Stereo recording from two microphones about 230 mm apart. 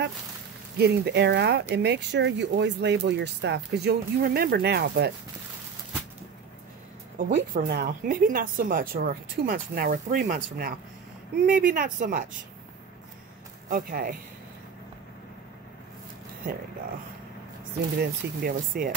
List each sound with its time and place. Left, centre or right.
0.7 s speech: right
7.2 s speech: right
13.7 s speech: right
18.0 s speech: right